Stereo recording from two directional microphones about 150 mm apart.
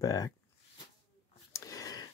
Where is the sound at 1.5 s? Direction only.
20° left (ahead or behind).